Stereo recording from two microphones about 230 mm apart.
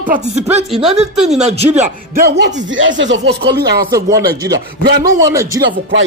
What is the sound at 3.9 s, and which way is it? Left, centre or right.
Speech, centre.